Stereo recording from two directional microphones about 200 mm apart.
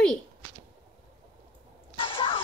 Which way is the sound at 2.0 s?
25° left (ahead or behind).